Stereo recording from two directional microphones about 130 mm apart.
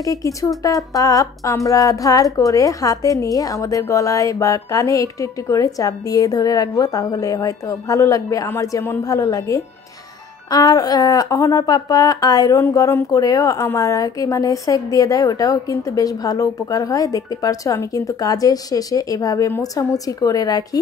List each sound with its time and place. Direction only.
0.0 s speech: 25° left (ahead or behind)